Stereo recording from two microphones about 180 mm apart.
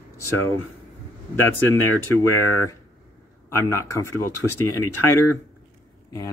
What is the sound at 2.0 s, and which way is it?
Speech, 15° left (ahead or behind).